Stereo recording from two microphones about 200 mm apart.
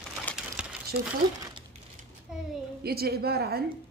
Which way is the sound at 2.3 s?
5° right (ahead or behind).